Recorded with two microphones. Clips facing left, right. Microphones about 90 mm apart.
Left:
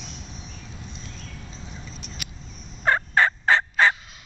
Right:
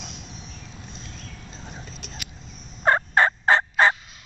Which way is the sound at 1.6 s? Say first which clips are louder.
Right 4 dB; 55° right (ahead or behind).